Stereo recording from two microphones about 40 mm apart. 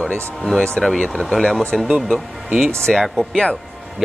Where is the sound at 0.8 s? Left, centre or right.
Centre.